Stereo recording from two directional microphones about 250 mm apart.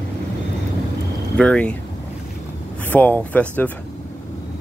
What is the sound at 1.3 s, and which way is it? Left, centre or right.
Speech, centre.